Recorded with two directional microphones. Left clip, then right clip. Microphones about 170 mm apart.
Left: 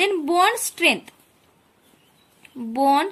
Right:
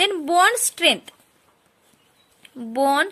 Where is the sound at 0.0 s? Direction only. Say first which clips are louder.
Right 1 dB; 50° right (ahead or behind).